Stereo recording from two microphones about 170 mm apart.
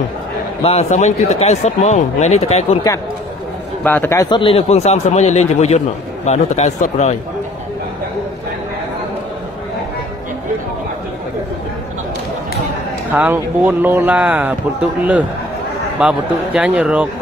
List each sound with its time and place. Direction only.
0.7 s speech: 40° left (ahead or behind)
3.8 s a man's voice: 10° left (ahead or behind)
4.3 s speech: 30° left (ahead or behind)
13.1 s speech: 10° right (ahead or behind)